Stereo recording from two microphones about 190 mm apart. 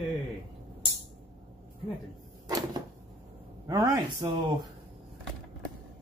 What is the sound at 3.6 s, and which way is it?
Speech, 20° right (ahead or behind).